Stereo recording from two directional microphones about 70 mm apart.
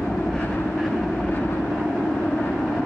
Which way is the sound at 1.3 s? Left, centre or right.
Left.